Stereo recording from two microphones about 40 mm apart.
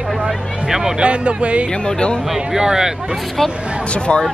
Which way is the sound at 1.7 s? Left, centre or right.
Left.